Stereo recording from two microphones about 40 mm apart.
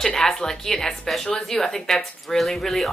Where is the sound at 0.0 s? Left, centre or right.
Centre.